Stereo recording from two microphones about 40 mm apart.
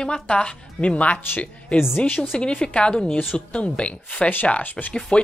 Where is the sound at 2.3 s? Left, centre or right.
Left.